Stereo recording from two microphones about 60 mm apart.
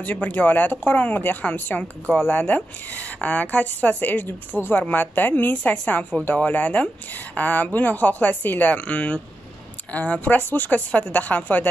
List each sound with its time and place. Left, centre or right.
0.0 s a woman's voice: left